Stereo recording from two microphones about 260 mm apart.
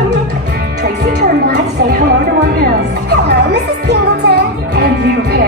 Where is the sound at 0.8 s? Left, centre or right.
Right.